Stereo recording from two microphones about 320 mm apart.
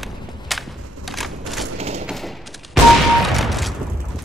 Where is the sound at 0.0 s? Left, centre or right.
Centre.